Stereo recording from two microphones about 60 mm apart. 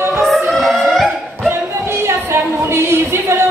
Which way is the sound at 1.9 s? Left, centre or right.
Right.